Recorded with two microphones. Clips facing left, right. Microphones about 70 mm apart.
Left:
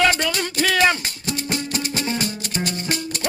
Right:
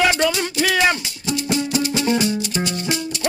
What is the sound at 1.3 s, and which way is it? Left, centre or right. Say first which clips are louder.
Music: right 5 dB; left.